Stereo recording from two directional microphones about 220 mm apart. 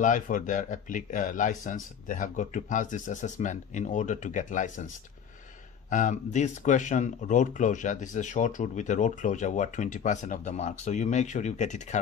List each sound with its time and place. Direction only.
0.0 s speech: 35° left (ahead or behind)